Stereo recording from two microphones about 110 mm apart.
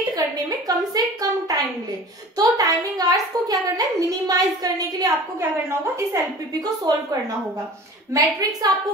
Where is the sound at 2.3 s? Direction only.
35° right (ahead or behind).